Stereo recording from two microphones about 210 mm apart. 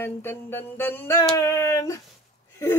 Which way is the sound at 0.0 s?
10° left (ahead or behind).